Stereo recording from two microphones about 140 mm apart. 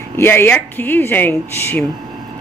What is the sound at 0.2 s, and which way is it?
Speech, 15° left (ahead or behind).